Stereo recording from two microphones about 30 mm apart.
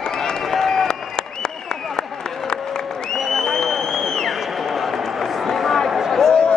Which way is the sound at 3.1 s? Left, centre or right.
Centre.